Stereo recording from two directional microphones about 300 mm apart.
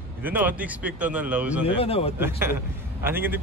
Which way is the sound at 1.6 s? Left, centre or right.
Centre.